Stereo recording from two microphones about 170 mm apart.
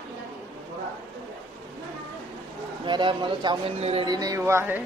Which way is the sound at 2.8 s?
30° right (ahead or behind).